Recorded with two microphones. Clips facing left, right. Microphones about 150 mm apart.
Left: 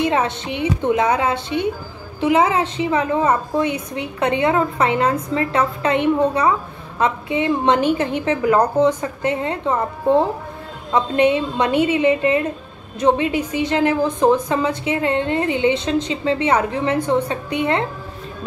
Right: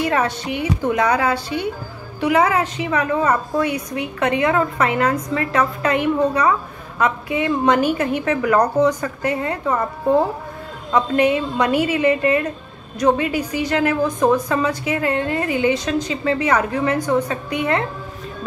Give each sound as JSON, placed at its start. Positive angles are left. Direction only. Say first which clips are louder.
{"t": 0.0, "sound": "a woman's voice", "louder": "left 1 dB", "side_deg": 20}